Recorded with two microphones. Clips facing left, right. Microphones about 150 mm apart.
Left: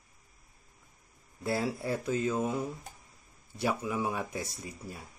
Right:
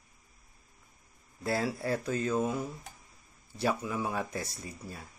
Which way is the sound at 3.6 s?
15° left (ahead or behind).